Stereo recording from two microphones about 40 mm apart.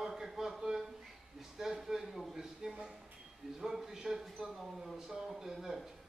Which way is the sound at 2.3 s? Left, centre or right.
Centre.